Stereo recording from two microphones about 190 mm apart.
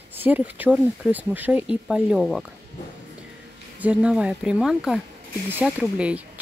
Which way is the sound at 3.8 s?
5° right (ahead or behind).